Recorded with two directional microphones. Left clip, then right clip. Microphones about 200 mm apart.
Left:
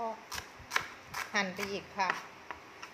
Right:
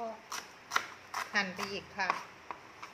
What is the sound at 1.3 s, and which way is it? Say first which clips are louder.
Speech: left 1 dB; 25° left (ahead or behind).